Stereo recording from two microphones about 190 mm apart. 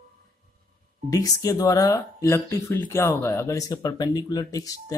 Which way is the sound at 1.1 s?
20° left (ahead or behind).